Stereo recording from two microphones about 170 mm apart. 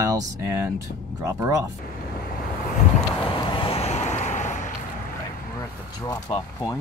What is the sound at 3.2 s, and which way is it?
Vehicle, 30° left (ahead or behind).